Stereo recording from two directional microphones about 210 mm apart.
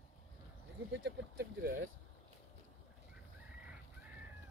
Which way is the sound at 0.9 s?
55° right (ahead or behind).